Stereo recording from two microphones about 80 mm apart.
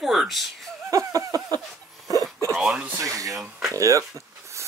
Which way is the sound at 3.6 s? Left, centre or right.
Right.